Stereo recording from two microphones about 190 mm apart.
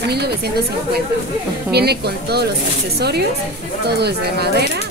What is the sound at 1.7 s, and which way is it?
A woman's voice, 60° right (ahead or behind).